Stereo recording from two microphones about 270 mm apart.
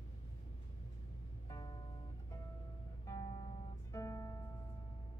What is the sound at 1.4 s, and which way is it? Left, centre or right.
Music, centre.